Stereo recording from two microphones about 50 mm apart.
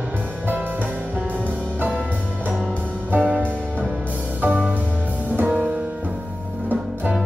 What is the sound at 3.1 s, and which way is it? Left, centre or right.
Music, right.